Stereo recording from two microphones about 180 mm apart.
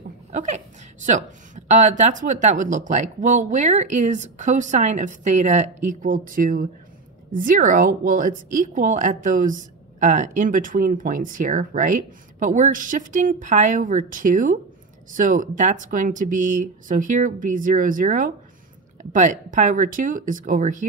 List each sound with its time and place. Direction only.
0.3 s chuckle: 40° right (ahead or behind)
1.0 s a woman's voice: 45° right (ahead or behind)